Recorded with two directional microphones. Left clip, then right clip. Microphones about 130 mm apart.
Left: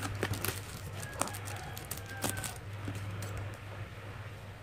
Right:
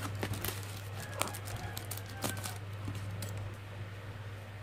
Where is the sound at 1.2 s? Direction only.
10° left (ahead or behind).